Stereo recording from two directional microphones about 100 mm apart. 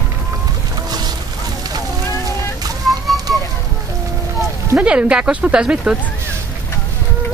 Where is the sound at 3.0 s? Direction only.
Centre (ahead or behind).